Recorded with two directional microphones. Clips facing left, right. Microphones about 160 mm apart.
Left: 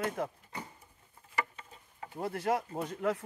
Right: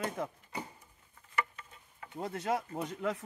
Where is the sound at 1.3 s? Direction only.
30° left (ahead or behind).